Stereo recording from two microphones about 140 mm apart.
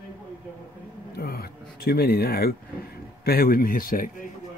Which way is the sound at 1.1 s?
90° left.